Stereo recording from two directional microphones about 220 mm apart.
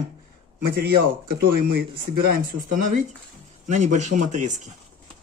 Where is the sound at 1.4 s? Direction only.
45° right (ahead or behind).